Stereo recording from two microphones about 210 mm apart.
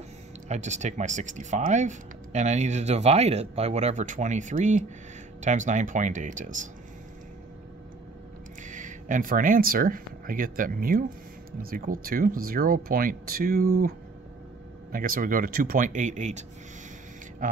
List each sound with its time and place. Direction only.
0.5 s speech: 35° right (ahead or behind)
8.6 s speech: 35° right (ahead or behind)